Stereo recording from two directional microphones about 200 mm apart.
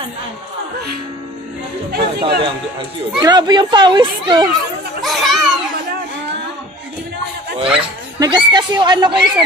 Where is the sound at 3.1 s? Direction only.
20° right (ahead or behind).